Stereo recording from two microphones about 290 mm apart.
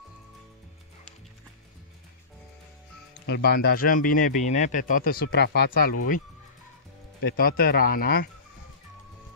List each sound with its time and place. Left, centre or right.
3.3 s speech: left
7.2 s speech: left